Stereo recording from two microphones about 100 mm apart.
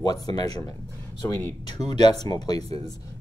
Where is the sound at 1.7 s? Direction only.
45° left (ahead or behind).